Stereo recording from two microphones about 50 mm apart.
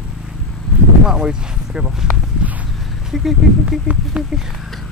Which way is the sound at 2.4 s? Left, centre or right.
Right.